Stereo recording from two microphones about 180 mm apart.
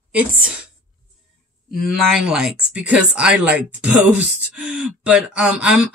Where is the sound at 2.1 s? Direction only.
5° right (ahead or behind).